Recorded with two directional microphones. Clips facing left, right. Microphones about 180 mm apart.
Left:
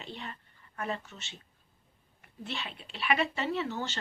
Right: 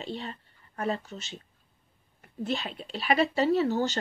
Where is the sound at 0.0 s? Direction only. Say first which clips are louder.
Right 6 dB; 35° right (ahead or behind).